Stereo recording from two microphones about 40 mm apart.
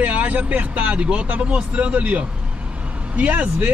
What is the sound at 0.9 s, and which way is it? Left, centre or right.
Speech, right.